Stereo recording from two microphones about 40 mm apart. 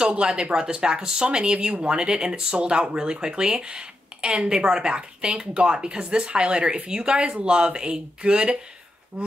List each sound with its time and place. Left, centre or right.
0.0 s speech: right